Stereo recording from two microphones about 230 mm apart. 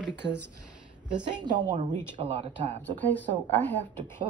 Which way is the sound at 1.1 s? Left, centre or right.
Centre.